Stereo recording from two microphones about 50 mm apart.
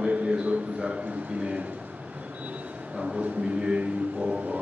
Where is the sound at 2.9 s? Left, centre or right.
Right.